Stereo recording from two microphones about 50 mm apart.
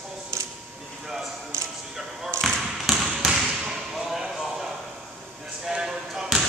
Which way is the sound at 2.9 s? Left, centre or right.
Centre.